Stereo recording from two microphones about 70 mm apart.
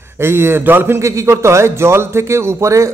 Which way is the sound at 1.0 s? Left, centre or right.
Right.